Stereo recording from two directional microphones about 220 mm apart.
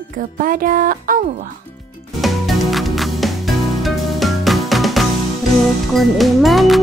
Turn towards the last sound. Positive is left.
turn(degrees=0)  # may be behind; listen again after turning